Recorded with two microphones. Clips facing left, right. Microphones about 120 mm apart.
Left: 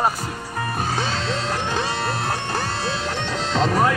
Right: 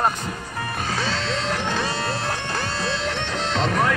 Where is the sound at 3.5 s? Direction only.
40° left (ahead or behind).